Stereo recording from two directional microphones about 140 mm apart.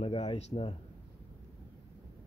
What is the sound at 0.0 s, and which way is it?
Speech, 40° left (ahead or behind).